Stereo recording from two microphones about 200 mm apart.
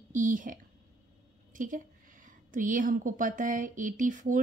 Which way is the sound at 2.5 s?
40° right (ahead or behind).